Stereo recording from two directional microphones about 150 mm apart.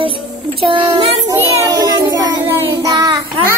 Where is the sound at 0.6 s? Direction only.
35° right (ahead or behind).